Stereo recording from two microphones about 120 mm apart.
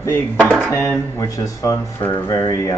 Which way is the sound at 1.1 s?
30° left (ahead or behind).